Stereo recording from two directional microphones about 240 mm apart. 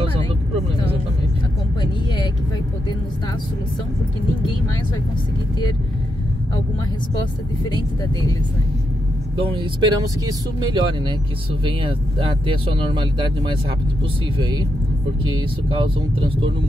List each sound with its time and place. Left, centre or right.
7.7 s speech: centre
9.4 s speech: centre
15.7 s speech: right